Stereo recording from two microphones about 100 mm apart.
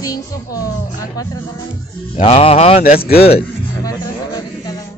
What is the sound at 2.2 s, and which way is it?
Speech, 90° left.